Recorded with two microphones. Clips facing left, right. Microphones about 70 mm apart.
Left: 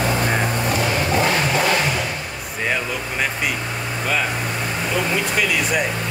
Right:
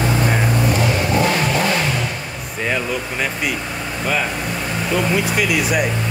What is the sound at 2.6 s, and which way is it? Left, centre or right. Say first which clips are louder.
A man's voice: right 2 dB; centre.